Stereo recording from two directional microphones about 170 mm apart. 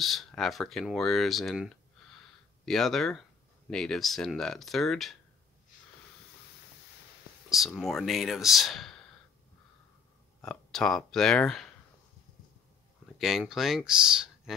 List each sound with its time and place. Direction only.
0.0 s speech: centre (ahead or behind)
7.4 s speech: centre (ahead or behind)
10.4 s speech: 5° left (ahead or behind)
13.2 s speech: 5° right (ahead or behind)